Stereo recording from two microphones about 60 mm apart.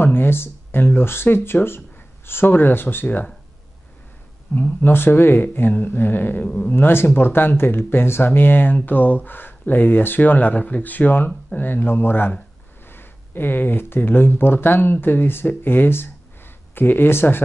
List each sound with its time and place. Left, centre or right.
0.0 s speech: left
4.6 s speech: left
6.4 s speech: left
6.7 s speech: left